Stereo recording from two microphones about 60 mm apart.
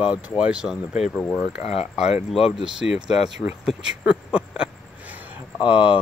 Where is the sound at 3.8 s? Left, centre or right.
Centre.